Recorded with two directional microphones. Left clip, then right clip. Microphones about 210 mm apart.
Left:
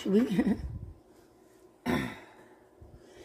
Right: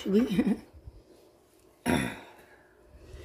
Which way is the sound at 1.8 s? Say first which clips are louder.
Right 3 dB; 20° right (ahead or behind).